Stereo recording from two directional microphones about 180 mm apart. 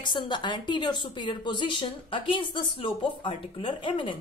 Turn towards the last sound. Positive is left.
turn(degrees=25)  # may be behind; listen again after turning